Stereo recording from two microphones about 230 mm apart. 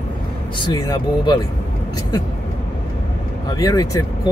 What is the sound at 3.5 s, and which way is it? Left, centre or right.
Speech, centre.